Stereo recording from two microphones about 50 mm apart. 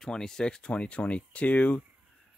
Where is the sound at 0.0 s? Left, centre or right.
Centre; by 1.8 s left.